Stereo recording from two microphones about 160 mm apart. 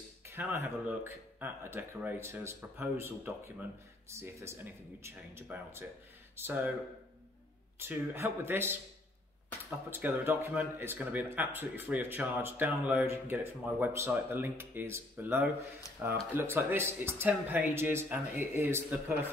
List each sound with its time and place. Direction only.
0.3 s speech: 15° right (ahead or behind)
7.8 s speech: 15° right (ahead or behind)
9.8 s speech: 15° right (ahead or behind)